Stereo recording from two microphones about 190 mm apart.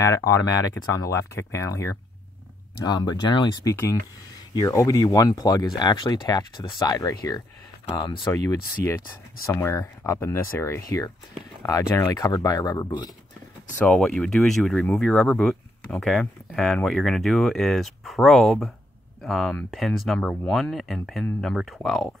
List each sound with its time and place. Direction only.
0.0 s speech: 15° left (ahead or behind)
9.5 s speech: 15° left (ahead or behind)
13.7 s speech: 5° left (ahead or behind)